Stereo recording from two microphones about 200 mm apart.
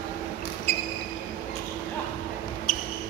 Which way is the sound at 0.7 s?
10° left (ahead or behind).